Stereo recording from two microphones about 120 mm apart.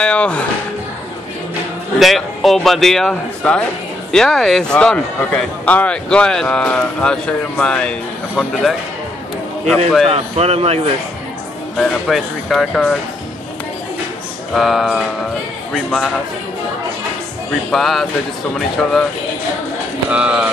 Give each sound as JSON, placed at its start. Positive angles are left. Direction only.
{"t": 0.0, "sound": "speech", "side_deg": 10}
{"t": 2.0, "sound": "a man's voice", "side_deg": 0}
{"t": 10.0, "sound": "a man's voice", "side_deg": -60}
{"t": 11.7, "sound": "a man's voice", "side_deg": 0}
{"t": 14.5, "sound": "a man's voice", "side_deg": 0}
{"t": 17.6, "sound": "a man's voice", "side_deg": 0}
{"t": 20.1, "sound": "speech", "side_deg": -10}